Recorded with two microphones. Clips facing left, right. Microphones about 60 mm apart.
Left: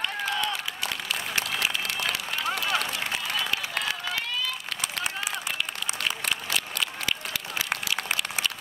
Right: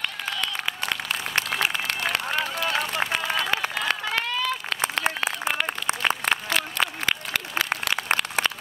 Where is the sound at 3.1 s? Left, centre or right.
Right.